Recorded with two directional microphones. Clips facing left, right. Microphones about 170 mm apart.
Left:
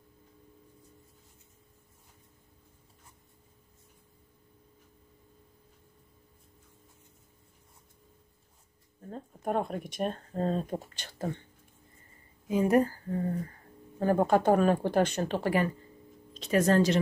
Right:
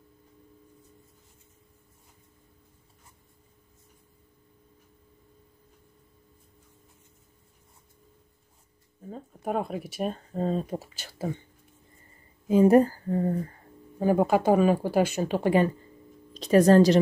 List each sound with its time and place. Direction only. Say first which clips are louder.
9.0 s speech: right 1 dB; 5° right (ahead or behind)
12.4 s speech: right 6 dB; 30° right (ahead or behind)
13.9 s speech: right 2 dB; 10° right (ahead or behind)
16.3 s speech: right 7 dB; 35° right (ahead or behind)